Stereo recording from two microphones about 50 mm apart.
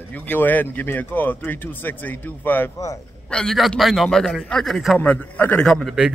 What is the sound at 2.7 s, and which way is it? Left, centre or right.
Speech, left.